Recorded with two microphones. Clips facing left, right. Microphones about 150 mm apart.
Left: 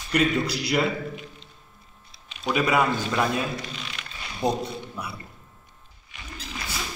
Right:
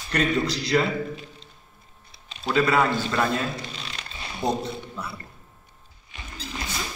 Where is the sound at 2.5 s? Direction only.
15° left (ahead or behind).